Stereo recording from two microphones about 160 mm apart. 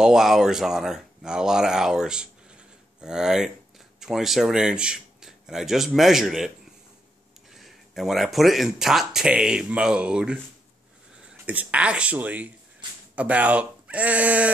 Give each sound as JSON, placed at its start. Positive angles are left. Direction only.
{"t": 0.0, "sound": "a man's voice", "side_deg": -5}
{"t": 7.5, "sound": "speech", "side_deg": 0}
{"t": 11.4, "sound": "speech", "side_deg": -10}